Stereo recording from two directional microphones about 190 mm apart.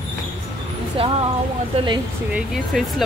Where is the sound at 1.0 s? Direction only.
30° right (ahead or behind).